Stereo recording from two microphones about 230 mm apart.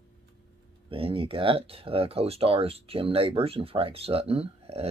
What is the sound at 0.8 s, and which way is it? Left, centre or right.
Speech, right.